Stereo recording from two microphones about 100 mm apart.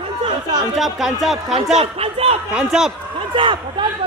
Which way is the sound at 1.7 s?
80° right.